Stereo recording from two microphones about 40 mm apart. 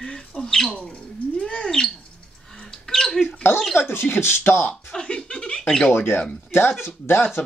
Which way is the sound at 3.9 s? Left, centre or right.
Left.